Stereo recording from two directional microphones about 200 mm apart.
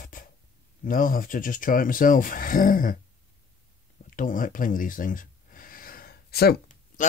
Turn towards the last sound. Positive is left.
turn(degrees=50)  # may be behind; listen again after turning